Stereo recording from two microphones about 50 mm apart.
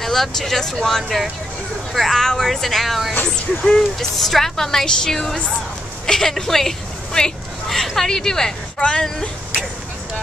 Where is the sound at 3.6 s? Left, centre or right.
Centre.